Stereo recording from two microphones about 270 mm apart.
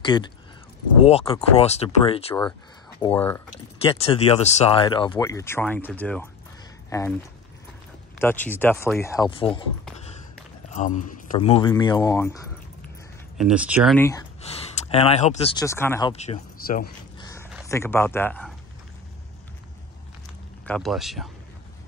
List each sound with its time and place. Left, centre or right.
0.0 s speech: centre
3.0 s speech: centre
3.8 s speech: centre
8.2 s speech: centre
10.7 s speech: left; by 12.4 s centre
13.4 s speech: centre
13.9 s speech: centre
14.4 s speech: left
16.1 s speech: left
17.2 s a sound: centre
17.6 s speech: centre
20.6 s speech: centre